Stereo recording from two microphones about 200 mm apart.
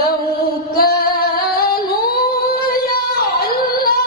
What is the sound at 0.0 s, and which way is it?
Singing, 45° left (ahead or behind).